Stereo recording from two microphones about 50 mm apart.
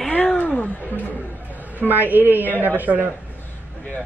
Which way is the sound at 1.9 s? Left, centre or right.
Right.